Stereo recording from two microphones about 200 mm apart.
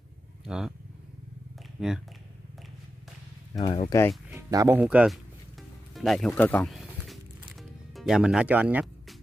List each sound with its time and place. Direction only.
0.5 s speech: 5° right (ahead or behind)
1.8 s speech: centre (ahead or behind)
3.5 s speech: 25° left (ahead or behind)
4.3 s speech: 15° right (ahead or behind)
5.9 s music: centre (ahead or behind)